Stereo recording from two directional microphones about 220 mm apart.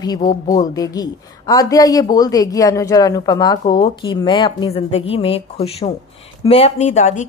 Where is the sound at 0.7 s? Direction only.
15° left (ahead or behind).